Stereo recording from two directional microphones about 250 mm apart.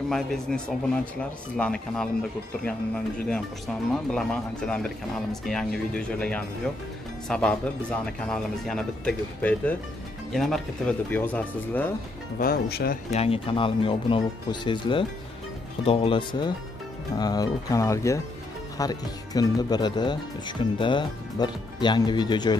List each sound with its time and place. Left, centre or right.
0.1 s speech: centre
3.3 s speech: centre
12.4 s speech: left
13.1 s speech: left